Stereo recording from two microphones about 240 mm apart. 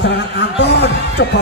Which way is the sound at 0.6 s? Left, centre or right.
Left.